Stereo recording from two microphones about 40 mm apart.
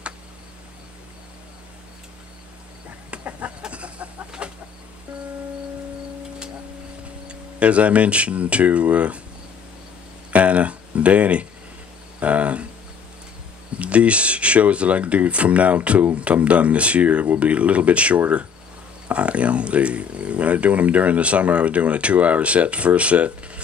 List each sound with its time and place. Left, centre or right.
3.3 s chicken: right
3.6 s a sound: right
4.4 s chicken: right
7.2 s speech: right
10.3 s a sound: right
13.7 s speech: right